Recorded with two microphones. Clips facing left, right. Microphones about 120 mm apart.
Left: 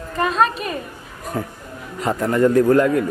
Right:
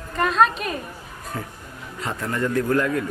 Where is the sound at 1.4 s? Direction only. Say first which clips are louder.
Left 8 dB; 40° left (ahead or behind).